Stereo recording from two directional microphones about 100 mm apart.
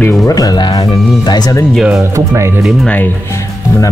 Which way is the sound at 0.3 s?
40° left (ahead or behind).